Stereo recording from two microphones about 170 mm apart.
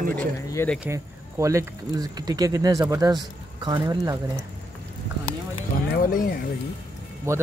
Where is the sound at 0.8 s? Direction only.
15° right (ahead or behind).